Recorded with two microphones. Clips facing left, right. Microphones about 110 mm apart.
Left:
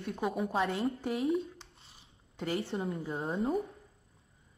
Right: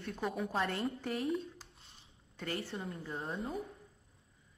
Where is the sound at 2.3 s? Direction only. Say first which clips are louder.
Left 6 dB; 20° left (ahead or behind).